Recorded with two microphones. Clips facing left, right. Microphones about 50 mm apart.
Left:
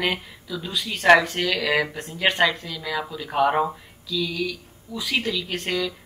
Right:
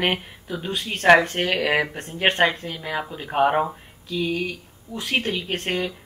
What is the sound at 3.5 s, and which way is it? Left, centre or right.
Speech, right.